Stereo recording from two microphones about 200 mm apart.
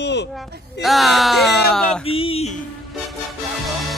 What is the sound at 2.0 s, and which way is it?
Speech, 30° left (ahead or behind).